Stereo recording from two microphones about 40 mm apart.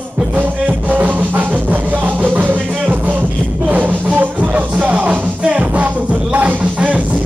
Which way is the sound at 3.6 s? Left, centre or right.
Right.